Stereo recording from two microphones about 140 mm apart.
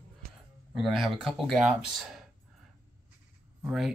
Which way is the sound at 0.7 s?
Centre (ahead or behind).